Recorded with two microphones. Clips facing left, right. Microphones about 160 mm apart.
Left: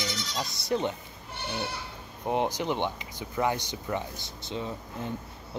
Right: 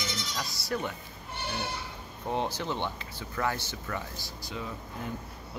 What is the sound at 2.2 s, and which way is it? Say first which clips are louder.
Speech: left 4 dB; 15° left (ahead or behind).